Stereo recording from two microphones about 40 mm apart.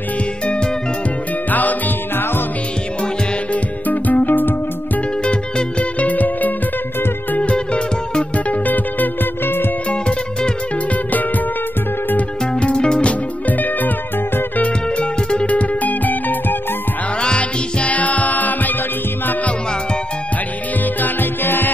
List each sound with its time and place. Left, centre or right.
1.5 s music: left
3.9 s music: left
5.2 s music: left
6.0 s music: left
7.3 s music: left
8.6 s music: left
9.8 s music: left
12.5 s music: left
13.5 s music: left
14.6 s music: left
17.2 s music: left
21.0 s music: left